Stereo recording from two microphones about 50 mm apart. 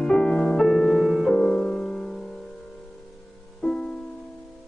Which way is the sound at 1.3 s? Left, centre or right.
Centre.